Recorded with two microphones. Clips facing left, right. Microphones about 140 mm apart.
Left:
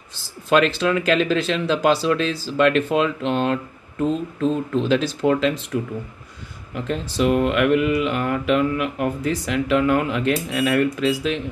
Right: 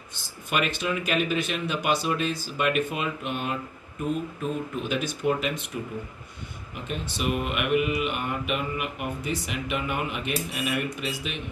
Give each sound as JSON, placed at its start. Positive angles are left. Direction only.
{"t": 0.5, "sound": "speech", "side_deg": 90}